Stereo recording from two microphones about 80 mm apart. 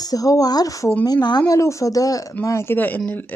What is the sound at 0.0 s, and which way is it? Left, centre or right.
Speech, left.